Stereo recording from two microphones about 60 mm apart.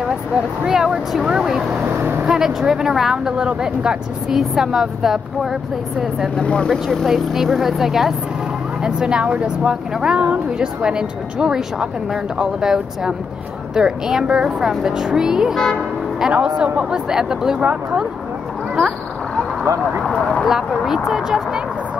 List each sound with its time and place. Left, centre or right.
0.7 s a woman's voice: centre
1.9 s speech: right
2.2 s a woman's voice: centre
6.3 s speech: centre
6.7 s a woman's voice: centre
15.5 s speech: centre
16.3 s a woman's voice: centre
17.6 s speech: right
20.4 s a woman's voice: centre